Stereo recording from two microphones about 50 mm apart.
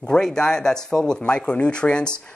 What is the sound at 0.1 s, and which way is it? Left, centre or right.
Speech, centre.